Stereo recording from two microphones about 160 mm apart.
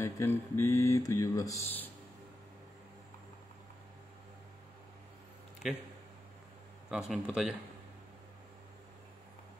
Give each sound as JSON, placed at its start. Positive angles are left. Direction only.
{"t": 0.0, "sound": "speech", "side_deg": 15}
{"t": 6.9, "sound": "speech", "side_deg": -5}